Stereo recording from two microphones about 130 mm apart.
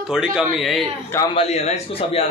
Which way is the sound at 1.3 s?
55° left (ahead or behind).